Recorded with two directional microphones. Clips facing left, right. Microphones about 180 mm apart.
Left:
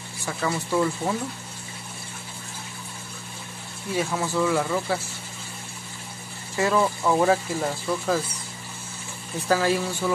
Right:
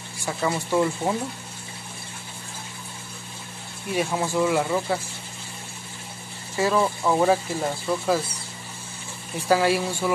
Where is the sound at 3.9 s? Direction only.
20° right (ahead or behind).